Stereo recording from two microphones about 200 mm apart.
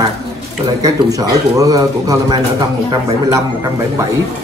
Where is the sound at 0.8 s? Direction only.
15° right (ahead or behind).